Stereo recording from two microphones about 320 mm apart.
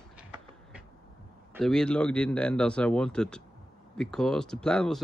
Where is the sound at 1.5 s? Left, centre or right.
Centre.